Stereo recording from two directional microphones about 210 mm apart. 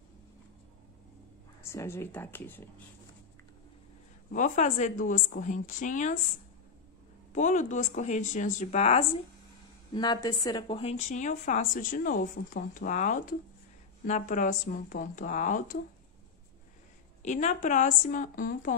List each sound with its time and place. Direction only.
1.6 s speech: 15° left (ahead or behind)
4.3 s a woman's voice: 40° left (ahead or behind)
7.3 s a woman's voice: 35° left (ahead or behind)
9.9 s a woman's voice: 20° left (ahead or behind); by 15.8 s 35° left (ahead or behind)
17.2 s a woman's voice: 35° left (ahead or behind)